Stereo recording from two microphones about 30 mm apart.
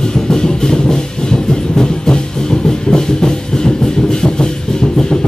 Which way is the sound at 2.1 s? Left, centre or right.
Left.